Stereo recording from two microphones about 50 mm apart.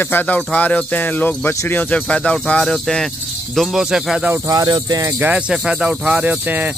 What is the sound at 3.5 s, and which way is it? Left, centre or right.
Speech, centre.